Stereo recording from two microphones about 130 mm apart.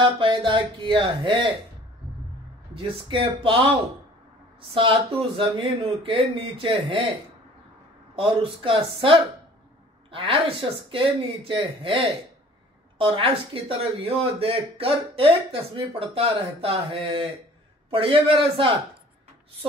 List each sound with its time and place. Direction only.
0.0 s speech: 40° right (ahead or behind)
2.7 s speech: 45° right (ahead or behind)
5.4 s speech: 40° right (ahead or behind)
8.2 s speech: 40° right (ahead or behind)